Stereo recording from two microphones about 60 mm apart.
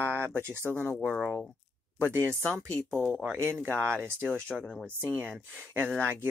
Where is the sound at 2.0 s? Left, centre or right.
Right.